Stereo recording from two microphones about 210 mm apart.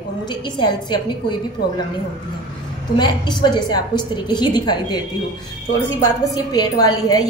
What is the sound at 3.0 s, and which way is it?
A woman's voice, 20° left (ahead or behind).